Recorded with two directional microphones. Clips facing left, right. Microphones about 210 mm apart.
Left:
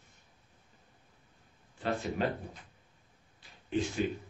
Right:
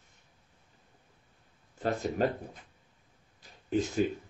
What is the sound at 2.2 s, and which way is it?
Speech, 40° right (ahead or behind).